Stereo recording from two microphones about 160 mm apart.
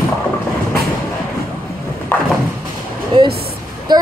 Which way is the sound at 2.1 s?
10° left (ahead or behind).